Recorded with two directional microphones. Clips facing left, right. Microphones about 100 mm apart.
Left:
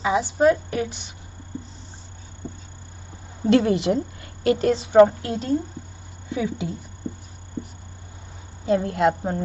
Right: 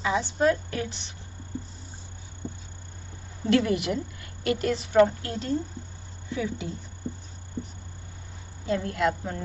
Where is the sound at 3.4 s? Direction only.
25° left (ahead or behind).